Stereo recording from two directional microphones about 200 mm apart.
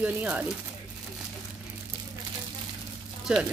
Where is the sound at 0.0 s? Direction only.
10° right (ahead or behind).